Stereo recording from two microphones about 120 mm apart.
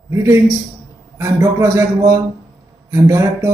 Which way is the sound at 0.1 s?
20° right (ahead or behind).